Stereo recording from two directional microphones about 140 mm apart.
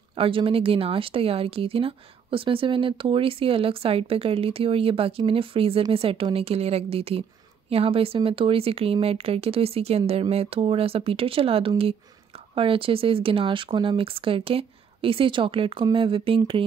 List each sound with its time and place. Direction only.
0.1 s speech: 40° right (ahead or behind)